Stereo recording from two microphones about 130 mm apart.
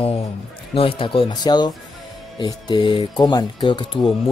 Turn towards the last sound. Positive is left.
turn(degrees=40)  # may be behind; listen again after turning